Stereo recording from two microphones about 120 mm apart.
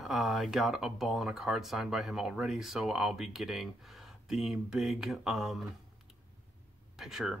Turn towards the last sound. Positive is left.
turn(degrees=-5)  # may be behind; listen again after turning